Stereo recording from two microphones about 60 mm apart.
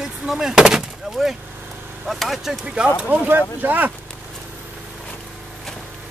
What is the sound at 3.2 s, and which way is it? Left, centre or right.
Speech, right.